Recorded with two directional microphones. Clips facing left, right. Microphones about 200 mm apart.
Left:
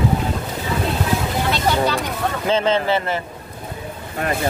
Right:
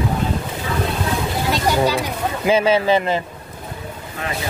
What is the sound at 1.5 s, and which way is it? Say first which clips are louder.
Speech: right 3 dB; 10° right (ahead or behind).